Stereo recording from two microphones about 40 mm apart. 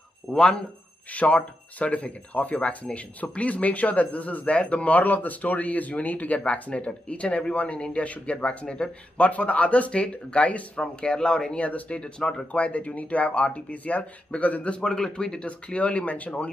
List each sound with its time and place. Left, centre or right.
0.3 s speech: left
1.1 s speech: left
9.3 s speech: left; by 11.5 s centre
11.5 s speech: left
12.2 s speech: centre
12.5 s speech: left
14.7 s speech: left